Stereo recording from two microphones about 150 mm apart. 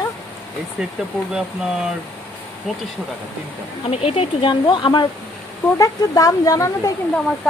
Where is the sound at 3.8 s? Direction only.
40° left (ahead or behind); by 6.9 s 20° left (ahead or behind).